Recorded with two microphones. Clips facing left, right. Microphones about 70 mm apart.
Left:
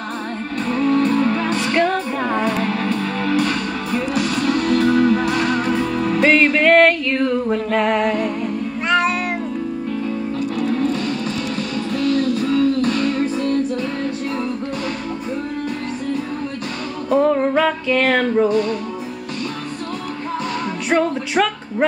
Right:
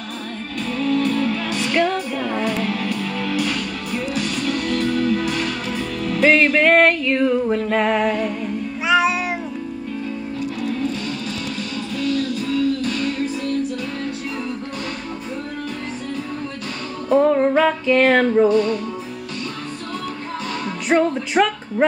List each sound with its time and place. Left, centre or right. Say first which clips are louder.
0.7 s music: left 3 dB; left
4.9 s music: left 4 dB; left
6.2 s music: even; centre
10.6 s music: left 5 dB; left
17.1 s a sound: right 1 dB; centre
20.9 s a sound: right 1 dB; centre